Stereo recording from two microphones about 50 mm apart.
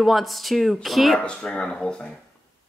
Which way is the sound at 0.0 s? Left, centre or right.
Centre.